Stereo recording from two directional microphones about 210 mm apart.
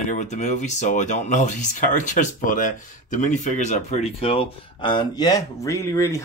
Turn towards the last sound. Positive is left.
turn(degrees=15)  # may be behind; listen again after turning